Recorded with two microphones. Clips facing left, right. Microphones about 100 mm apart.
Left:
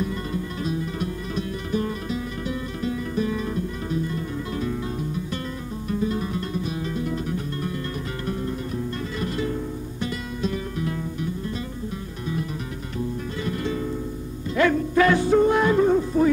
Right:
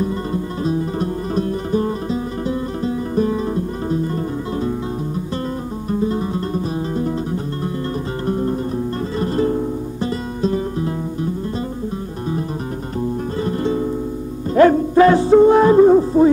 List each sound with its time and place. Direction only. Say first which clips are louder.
0.0 s music: right 6 dB; 35° right (ahead or behind)
13.4 s music: right 7 dB; 35° right (ahead or behind)